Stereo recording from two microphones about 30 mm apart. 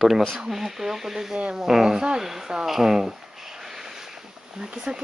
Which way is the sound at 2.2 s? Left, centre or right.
Centre.